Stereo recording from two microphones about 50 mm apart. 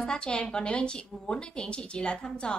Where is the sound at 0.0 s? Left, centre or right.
Centre.